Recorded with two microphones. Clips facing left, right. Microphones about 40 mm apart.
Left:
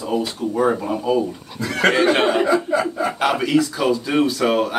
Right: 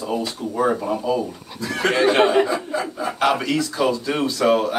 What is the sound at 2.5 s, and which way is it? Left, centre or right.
Speech, left.